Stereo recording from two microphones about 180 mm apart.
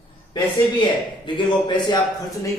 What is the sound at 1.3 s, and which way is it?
A man's voice, 25° left (ahead or behind).